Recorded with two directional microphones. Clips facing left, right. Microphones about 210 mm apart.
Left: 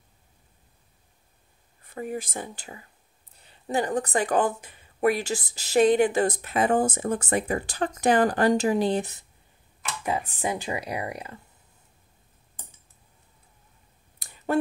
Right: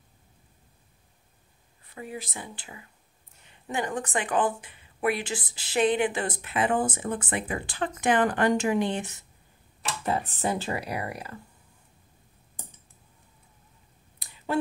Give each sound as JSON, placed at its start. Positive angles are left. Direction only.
{"t": 1.9, "sound": "speech", "side_deg": 45}
{"t": 10.0, "sound": "speech", "side_deg": 10}
{"t": 14.2, "sound": "a sound", "side_deg": 50}